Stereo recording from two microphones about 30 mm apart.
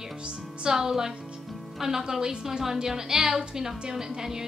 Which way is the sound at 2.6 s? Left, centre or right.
Centre.